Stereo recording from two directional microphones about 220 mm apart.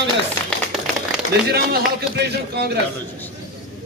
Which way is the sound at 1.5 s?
45° right (ahead or behind).